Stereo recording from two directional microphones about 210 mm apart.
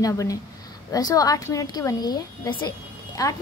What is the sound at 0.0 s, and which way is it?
A woman's voice, 15° left (ahead or behind).